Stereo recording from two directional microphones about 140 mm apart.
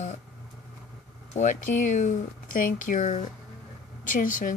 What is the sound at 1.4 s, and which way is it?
Speech, 65° left (ahead or behind).